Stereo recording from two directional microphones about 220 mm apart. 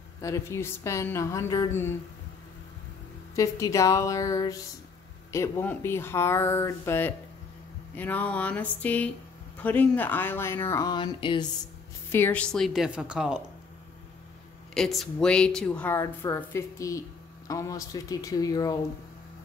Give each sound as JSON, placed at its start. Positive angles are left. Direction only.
{"t": 0.2, "sound": "speech", "side_deg": 15}
{"t": 3.3, "sound": "speech", "side_deg": 15}
{"t": 12.1, "sound": "speech", "side_deg": 10}
{"t": 14.7, "sound": "speech", "side_deg": 0}